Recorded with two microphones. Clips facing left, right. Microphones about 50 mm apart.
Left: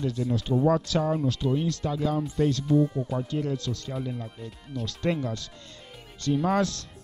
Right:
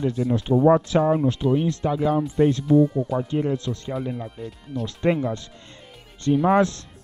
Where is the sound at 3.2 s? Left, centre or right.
Right.